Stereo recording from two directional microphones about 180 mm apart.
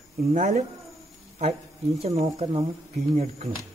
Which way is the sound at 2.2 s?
30° right (ahead or behind).